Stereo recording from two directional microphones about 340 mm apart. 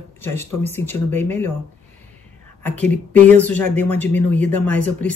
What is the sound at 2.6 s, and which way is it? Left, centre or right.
A woman's voice, centre.